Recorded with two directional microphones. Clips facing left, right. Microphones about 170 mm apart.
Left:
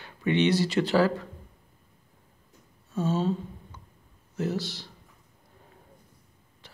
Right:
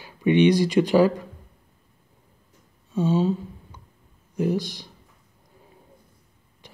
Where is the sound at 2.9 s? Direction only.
Centre (ahead or behind).